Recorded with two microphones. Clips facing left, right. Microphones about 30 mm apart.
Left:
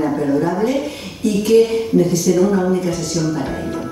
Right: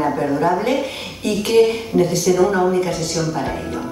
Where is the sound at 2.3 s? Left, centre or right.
Right.